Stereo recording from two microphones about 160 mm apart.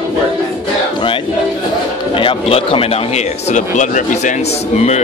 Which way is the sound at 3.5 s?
50° left (ahead or behind).